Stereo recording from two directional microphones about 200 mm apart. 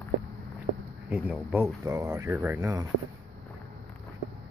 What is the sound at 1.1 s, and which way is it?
Speech, 5° right (ahead or behind).